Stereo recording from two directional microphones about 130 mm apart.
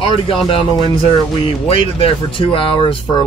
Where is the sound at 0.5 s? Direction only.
45° left (ahead or behind).